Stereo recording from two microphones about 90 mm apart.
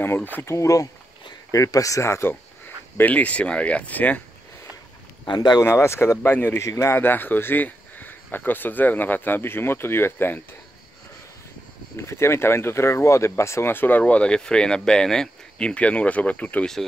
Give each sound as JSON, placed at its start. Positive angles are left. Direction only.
{"t": 0.0, "sound": "speech", "side_deg": 25}
{"t": 0.6, "sound": "speech", "side_deg": 35}
{"t": 3.0, "sound": "speech", "side_deg": 15}
{"t": 5.2, "sound": "speech", "side_deg": 55}
{"t": 5.6, "sound": "speech", "side_deg": 30}
{"t": 7.0, "sound": "speech", "side_deg": 20}
{"t": 12.0, "sound": "speech", "side_deg": 30}